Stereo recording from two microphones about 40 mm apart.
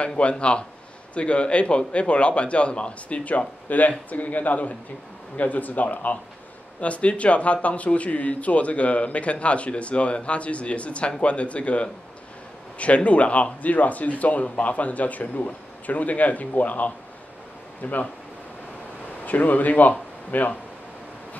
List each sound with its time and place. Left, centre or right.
0.0 s a man's voice: left
19.2 s speech: left